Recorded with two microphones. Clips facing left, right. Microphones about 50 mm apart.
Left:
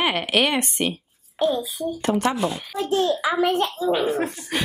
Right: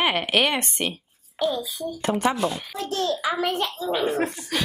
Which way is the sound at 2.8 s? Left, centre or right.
Centre.